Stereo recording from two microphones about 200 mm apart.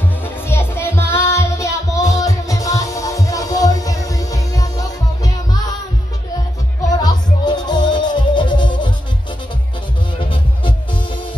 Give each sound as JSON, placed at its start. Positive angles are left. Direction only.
{"t": 0.2, "sound": "music", "side_deg": 10}
{"t": 7.0, "sound": "music", "side_deg": 20}
{"t": 10.3, "sound": "music", "side_deg": 25}